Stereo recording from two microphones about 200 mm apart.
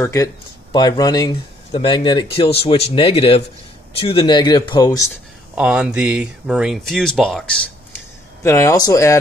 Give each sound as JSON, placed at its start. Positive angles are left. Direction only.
{"t": 0.0, "sound": "speech", "side_deg": 15}
{"t": 5.6, "sound": "speech", "side_deg": -5}